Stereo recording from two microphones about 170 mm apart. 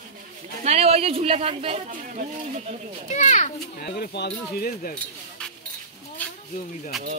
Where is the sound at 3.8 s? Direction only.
70° left (ahead or behind).